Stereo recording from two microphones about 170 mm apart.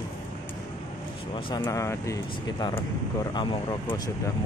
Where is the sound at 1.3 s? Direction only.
25° left (ahead or behind).